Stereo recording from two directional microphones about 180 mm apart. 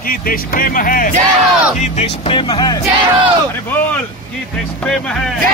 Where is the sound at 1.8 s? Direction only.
35° left (ahead or behind).